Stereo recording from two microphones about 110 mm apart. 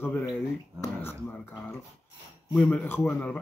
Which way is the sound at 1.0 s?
20° left (ahead or behind).